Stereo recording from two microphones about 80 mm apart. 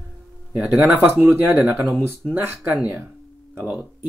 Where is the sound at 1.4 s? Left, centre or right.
Centre.